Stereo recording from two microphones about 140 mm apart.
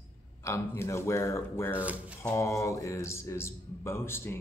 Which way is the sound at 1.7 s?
10° right (ahead or behind).